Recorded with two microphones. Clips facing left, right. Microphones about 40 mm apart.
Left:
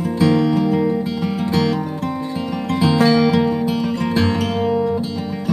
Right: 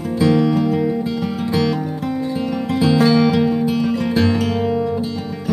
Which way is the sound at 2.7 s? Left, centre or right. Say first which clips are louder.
Even; centre.